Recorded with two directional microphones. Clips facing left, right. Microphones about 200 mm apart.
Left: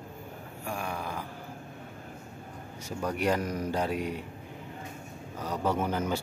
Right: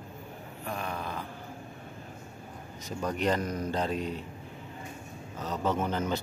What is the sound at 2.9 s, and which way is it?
Speech, 10° left (ahead or behind).